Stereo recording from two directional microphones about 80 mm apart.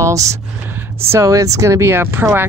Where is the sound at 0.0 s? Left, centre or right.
Right.